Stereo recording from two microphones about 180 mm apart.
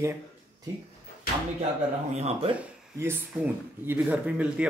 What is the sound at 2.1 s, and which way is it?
Speech, 35° right (ahead or behind).